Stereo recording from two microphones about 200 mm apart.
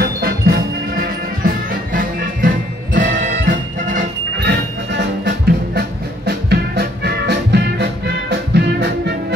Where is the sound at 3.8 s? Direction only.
60° right (ahead or behind).